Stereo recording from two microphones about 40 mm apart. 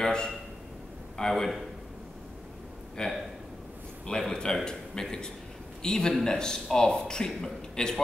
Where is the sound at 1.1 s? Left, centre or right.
Centre.